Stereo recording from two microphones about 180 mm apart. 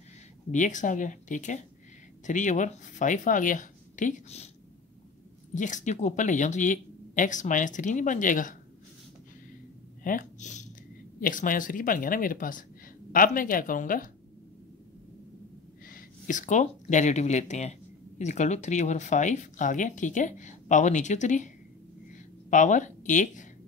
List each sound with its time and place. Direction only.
0.5 s speech: 45° left (ahead or behind)
5.5 s speech: 45° left (ahead or behind)
10.0 s speech: 45° left (ahead or behind)
15.9 s speech: 45° left (ahead or behind)
22.5 s speech: 45° left (ahead or behind)